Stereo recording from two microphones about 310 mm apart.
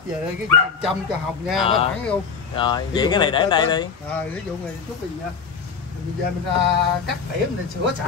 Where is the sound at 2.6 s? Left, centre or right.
Centre.